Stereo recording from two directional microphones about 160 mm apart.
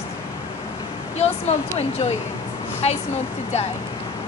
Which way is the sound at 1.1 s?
40° left (ahead or behind).